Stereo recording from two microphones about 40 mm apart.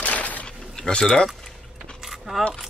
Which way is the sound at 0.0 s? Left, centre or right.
Left.